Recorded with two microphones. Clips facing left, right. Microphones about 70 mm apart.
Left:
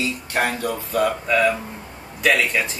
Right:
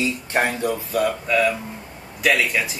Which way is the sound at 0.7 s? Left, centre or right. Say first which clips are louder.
Even; centre.